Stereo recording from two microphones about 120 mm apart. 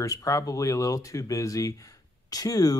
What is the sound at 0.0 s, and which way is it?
Speech, 30° left (ahead or behind).